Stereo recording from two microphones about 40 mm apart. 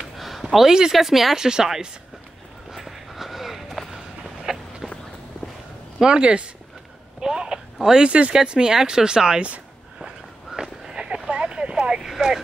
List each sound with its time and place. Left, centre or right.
0.2 s a sound: centre
0.9 s speech: centre
2.7 s run: centre
3.9 s walk: centre
6.0 s speech: right
7.2 s a sound: centre
7.9 s speech: right
9.9 s walk: centre
11.2 s a sound: right
12.1 s speech: centre